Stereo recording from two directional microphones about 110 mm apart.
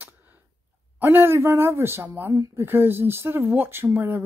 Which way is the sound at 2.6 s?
20° right (ahead or behind).